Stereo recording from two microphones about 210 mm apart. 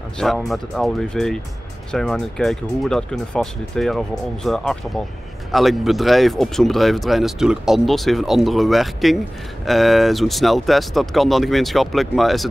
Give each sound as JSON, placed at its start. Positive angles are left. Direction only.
{"t": 0.2, "sound": "speech", "side_deg": 0}